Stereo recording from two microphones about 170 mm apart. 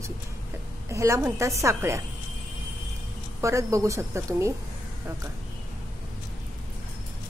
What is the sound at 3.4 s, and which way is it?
A woman's voice, 15° right (ahead or behind).